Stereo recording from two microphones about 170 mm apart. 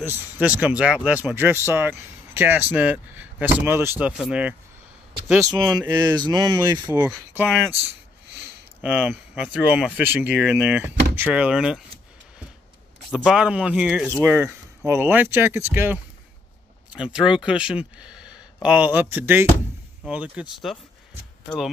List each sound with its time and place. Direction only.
0.0 s speech: 10° right (ahead or behind)
5.7 s speech: 20° right (ahead or behind)
7.0 s speech: 15° right (ahead or behind)
8.8 s speech: 5° right (ahead or behind)
13.1 s speech: 5° right (ahead or behind)